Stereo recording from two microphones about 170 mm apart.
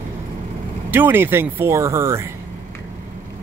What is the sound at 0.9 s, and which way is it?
Speech, 10° right (ahead or behind).